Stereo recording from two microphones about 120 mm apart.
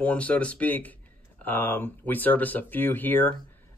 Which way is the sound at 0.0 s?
10° left (ahead or behind).